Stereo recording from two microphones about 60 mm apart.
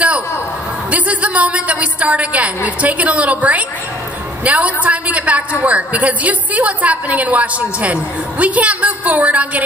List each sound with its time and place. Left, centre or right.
0.8 s a woman's voice: right